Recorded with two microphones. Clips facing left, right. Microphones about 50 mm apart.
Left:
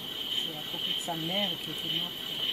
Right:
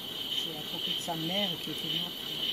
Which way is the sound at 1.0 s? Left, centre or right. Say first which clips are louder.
Even; centre.